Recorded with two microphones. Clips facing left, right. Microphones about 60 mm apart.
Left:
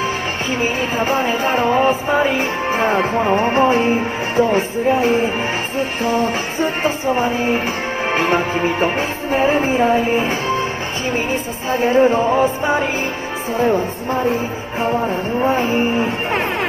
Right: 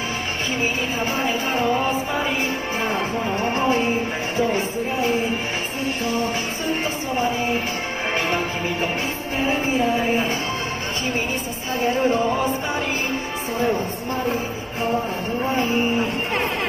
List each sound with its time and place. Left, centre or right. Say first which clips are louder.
0.9 s music: left 6 dB; left
1.4 s music: left 7 dB; left
8.1 s music: left 7 dB; left
11.7 s music: left 6 dB; left
15.4 s music: left 4 dB; left